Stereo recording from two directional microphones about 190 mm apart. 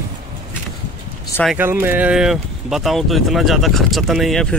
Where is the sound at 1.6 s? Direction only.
10° right (ahead or behind).